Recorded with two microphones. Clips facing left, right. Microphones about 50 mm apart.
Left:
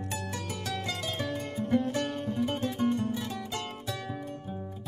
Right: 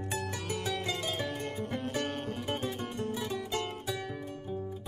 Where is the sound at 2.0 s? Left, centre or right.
Right.